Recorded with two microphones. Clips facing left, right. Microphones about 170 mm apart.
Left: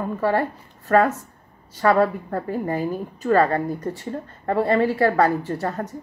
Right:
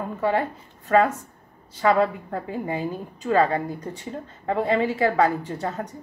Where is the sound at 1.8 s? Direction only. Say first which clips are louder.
Left 2 dB; 10° right (ahead or behind).